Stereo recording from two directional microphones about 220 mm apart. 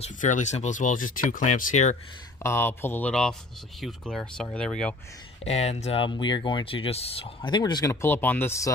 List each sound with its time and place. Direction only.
0.0 s speech: 35° left (ahead or behind)
2.4 s speech: 10° left (ahead or behind)
5.5 s speech: 30° left (ahead or behind); by 8.7 s 15° left (ahead or behind)